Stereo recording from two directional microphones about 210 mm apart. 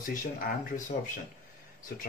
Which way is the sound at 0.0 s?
40° left (ahead or behind).